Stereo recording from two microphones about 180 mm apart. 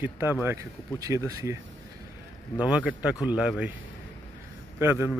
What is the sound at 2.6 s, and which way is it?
Speech, 5° right (ahead or behind).